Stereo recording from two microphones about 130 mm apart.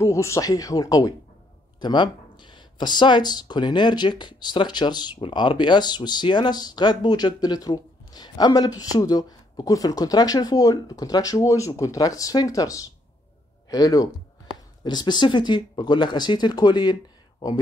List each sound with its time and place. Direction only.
0.0 s speech: 25° left (ahead or behind)